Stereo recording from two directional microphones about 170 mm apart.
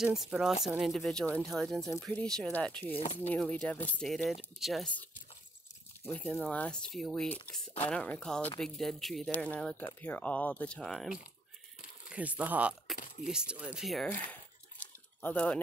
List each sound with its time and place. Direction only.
0.0 s speech: 5° right (ahead or behind)
6.0 s speech: 10° left (ahead or behind); by 12.9 s 5° right (ahead or behind)
13.0 s a sound: 35° left (ahead or behind)
13.3 s speech: 5° right (ahead or behind)
14.0 s speech: 10° left (ahead or behind)